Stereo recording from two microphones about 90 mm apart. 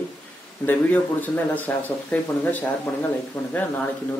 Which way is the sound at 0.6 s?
20° left (ahead or behind).